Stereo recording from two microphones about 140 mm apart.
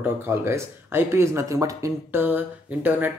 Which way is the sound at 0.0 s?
15° right (ahead or behind).